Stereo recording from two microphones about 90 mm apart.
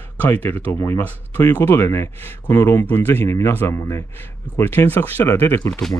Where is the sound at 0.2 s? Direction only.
20° left (ahead or behind).